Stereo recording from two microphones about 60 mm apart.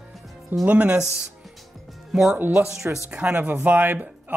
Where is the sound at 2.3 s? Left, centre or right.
Right.